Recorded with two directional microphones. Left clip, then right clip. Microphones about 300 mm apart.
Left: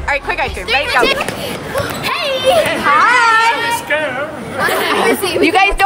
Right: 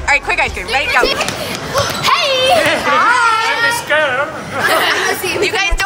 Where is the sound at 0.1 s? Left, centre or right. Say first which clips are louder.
Right 3 dB; centre.